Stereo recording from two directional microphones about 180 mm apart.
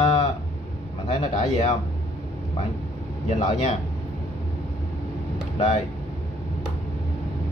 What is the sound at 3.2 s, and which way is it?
Speech, 40° left (ahead or behind).